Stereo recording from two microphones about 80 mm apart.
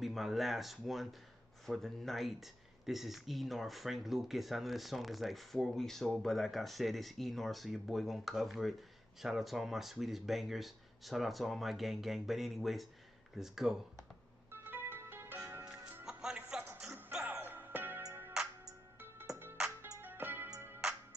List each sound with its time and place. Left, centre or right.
0.0 s speech: centre
14.5 s music: right
16.1 s music: centre; by 18.0 s right
20.0 s music: right